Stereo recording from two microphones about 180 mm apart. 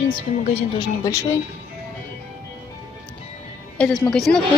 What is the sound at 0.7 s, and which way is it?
Speech, 20° left (ahead or behind).